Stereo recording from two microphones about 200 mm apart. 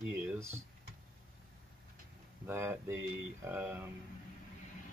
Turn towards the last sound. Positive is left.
turn(degrees=-10)  # may be behind; listen again after turning